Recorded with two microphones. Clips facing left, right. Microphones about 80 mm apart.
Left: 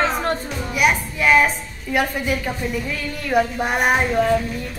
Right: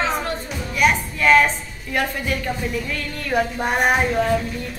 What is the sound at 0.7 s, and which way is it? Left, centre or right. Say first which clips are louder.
A woman's voice: even; centre.